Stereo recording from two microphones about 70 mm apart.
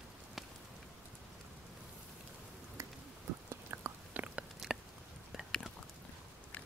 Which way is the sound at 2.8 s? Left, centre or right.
Right.